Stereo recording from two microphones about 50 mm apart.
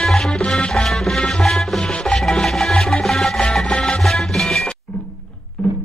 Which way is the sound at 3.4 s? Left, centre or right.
Centre.